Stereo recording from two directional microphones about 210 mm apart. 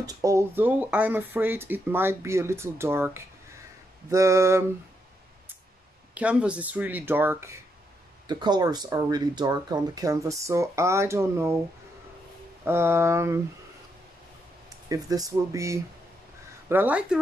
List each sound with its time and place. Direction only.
0.0 s speech: 15° right (ahead or behind)
6.1 s speech: 5° right (ahead or behind)
8.3 s speech: 20° right (ahead or behind)
12.6 s speech: 10° right (ahead or behind)
14.9 s speech: 15° right (ahead or behind)